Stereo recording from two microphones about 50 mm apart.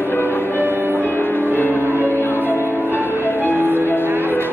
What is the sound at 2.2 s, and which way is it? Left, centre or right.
Music, left.